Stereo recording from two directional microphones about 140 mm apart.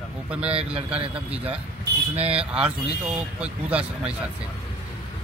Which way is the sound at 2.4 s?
10° right (ahead or behind).